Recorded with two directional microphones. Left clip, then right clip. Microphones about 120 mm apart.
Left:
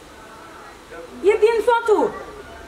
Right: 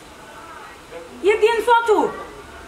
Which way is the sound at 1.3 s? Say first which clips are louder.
Even; centre (ahead or behind).